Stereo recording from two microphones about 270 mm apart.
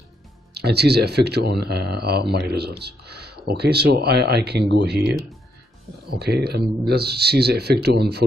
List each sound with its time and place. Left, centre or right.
0.6 s speech: right